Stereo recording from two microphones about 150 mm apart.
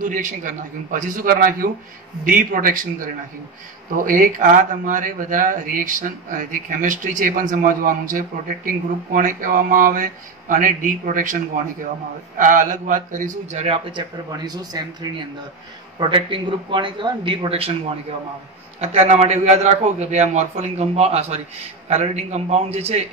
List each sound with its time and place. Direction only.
0.0 s speech: 60° right (ahead or behind)
4.0 s a man's voice: 65° right (ahead or behind); by 23.0 s 45° right (ahead or behind)